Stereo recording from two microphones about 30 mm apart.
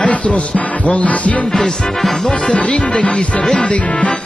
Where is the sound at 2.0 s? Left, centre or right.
Centre.